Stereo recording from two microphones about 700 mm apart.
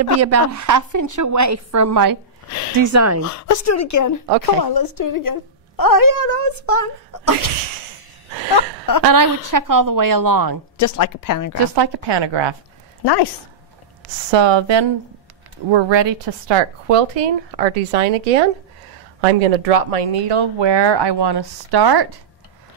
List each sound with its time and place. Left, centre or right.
0.2 s a woman's voice: right
3.3 s a woman's voice: left
8.5 s a woman's voice: left
9.0 s a woman's voice: right
10.8 s a woman's voice: left
11.7 s speech: right
13.0 s speech: left
14.3 s speech: right